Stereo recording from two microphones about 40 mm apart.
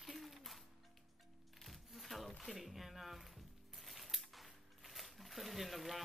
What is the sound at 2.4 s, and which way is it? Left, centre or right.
Speech, centre.